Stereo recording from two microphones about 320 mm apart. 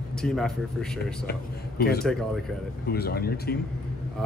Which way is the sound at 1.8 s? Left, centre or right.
Left.